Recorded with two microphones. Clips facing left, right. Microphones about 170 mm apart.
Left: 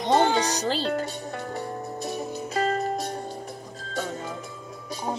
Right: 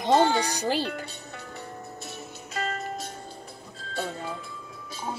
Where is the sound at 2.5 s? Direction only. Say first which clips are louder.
Left 6 dB; 35° left (ahead or behind).